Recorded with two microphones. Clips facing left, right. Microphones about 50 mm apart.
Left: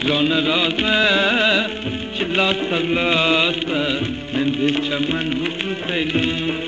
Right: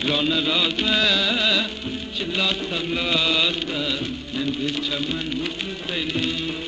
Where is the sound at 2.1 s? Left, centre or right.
Left.